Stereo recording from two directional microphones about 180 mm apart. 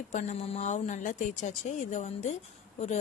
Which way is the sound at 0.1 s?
40° left (ahead or behind).